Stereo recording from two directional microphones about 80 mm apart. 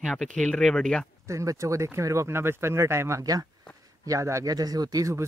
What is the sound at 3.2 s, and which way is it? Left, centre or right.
Speech, right.